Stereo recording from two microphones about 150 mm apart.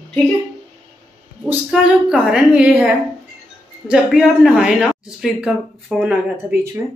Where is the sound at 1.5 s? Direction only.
5° right (ahead or behind).